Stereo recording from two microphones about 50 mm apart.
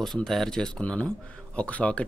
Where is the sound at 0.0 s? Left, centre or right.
Centre.